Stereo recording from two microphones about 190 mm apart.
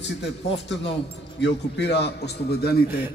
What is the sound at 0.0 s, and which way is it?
A man's voice, 65° left (ahead or behind).